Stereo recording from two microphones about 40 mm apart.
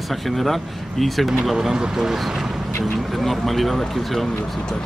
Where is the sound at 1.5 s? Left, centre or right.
Centre.